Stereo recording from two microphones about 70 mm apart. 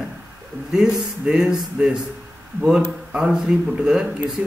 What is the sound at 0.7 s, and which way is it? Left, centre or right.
A man's voice, centre.